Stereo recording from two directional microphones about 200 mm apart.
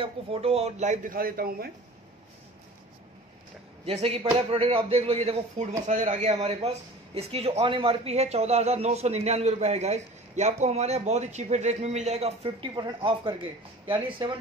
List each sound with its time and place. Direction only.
0.0 s a man's voice: 30° right (ahead or behind); by 1.7 s 50° right (ahead or behind)
3.8 s a man's voice: 30° right (ahead or behind)